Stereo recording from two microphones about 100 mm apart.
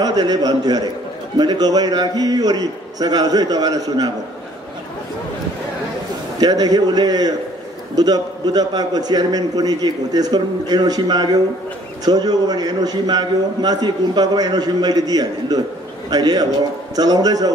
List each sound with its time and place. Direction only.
0.0 s a man's voice: 40° right (ahead or behind)
6.4 s a man's voice: 40° right (ahead or behind)